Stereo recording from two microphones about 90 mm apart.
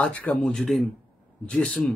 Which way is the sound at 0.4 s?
Centre (ahead or behind).